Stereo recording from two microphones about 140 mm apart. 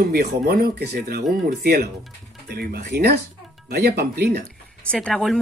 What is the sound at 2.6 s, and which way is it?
Speech, 90° right.